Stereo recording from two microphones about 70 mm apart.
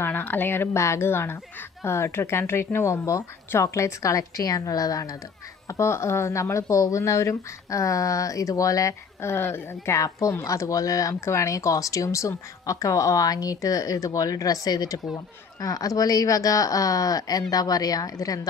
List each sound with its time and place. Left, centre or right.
0.0 s speech: left
5.7 s speech: left
9.2 s speech: left
9.9 s speech: left
11.1 s speech: left